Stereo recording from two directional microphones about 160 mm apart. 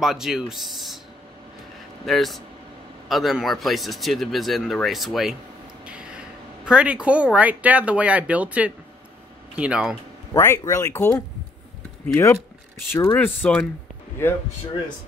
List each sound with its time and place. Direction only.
0.0 s speech: 5° right (ahead or behind)
2.0 s speech: centre (ahead or behind)
5.9 s a sound: 5° right (ahead or behind)
7.3 s speech: 10° right (ahead or behind)
10.3 s speech: 20° left (ahead or behind)
12.9 s speech: 15° left (ahead or behind)